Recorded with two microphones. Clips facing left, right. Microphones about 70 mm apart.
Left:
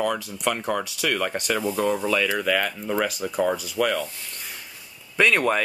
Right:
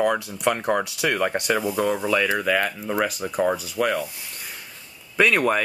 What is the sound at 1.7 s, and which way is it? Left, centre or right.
Speech, centre.